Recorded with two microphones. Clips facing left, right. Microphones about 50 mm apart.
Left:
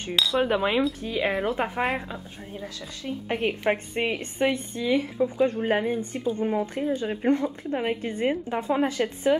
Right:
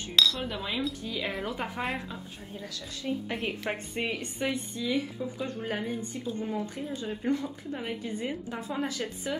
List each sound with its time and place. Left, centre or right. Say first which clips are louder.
0.1 s speech: left 1 dB; centre
0.4 s speech: left 10 dB; left
1.0 s speech: left 7 dB; left
3.3 s speech: left 8 dB; left